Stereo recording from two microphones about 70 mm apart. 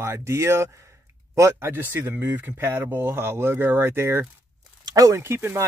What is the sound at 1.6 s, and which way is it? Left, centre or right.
Speech, right.